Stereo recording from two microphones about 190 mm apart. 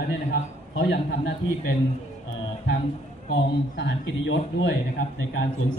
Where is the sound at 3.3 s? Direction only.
75° left (ahead or behind).